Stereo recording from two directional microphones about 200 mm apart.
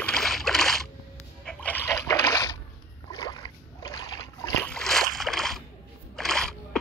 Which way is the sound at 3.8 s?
20° left (ahead or behind).